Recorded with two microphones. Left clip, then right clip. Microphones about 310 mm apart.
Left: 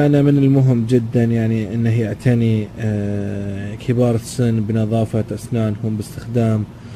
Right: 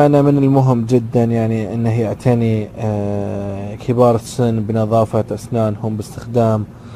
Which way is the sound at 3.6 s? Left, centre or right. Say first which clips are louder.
Right 2 dB; centre.